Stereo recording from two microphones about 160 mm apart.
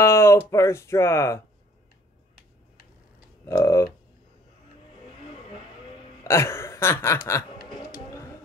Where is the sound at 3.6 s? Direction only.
20° left (ahead or behind).